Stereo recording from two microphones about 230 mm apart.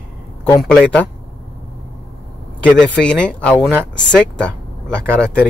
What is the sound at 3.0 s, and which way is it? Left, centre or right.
Speech, centre.